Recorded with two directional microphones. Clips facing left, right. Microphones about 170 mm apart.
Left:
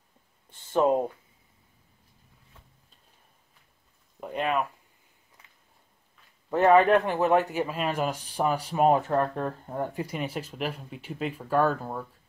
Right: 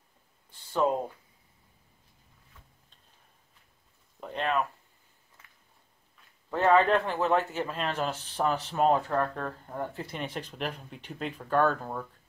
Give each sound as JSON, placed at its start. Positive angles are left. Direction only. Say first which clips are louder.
{"t": 0.5, "sound": "speech", "louder": "left 4 dB", "side_deg": 20}
{"t": 4.2, "sound": "speech", "louder": "left 2 dB", "side_deg": 10}
{"t": 6.5, "sound": "speech", "louder": "left 4 dB", "side_deg": 15}